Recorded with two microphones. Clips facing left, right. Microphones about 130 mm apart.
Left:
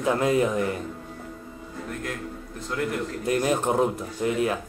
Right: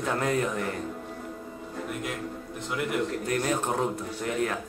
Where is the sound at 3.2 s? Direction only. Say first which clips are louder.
Left 4 dB; 15° left (ahead or behind).